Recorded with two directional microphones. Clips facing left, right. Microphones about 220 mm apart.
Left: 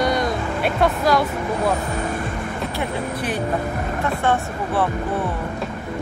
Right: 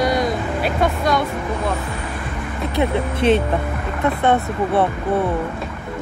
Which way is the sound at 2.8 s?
25° right (ahead or behind).